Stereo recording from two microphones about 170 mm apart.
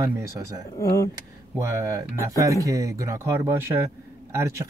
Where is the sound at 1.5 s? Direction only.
15° right (ahead or behind).